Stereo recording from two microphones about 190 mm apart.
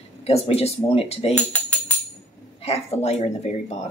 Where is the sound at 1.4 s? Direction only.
5° left (ahead or behind).